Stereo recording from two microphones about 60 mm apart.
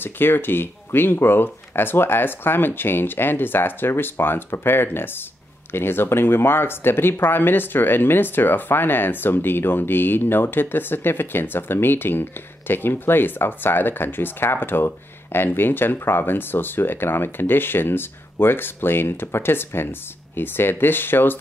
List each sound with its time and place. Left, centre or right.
0.0 s speech: left